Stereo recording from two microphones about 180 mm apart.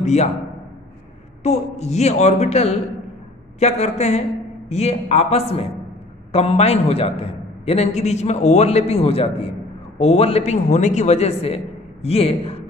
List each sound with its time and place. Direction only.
0.0 s a man's voice: 40° left (ahead or behind)
1.4 s a man's voice: 35° left (ahead or behind)